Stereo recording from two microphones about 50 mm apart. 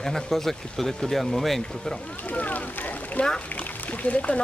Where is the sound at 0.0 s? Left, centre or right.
Centre.